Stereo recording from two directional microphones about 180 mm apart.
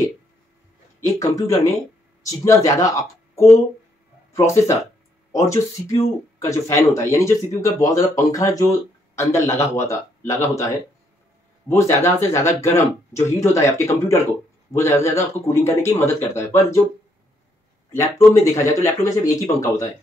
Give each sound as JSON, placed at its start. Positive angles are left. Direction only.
{"t": 1.0, "sound": "speech", "side_deg": 20}
{"t": 11.7, "sound": "speech", "side_deg": 15}
{"t": 17.9, "sound": "speech", "side_deg": 15}